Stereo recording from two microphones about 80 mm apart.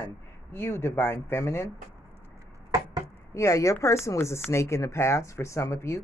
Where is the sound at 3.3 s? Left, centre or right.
Left.